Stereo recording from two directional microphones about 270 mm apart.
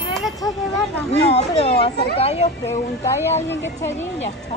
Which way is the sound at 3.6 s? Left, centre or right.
Centre.